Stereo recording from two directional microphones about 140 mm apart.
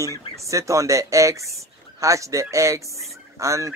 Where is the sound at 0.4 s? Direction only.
20° right (ahead or behind).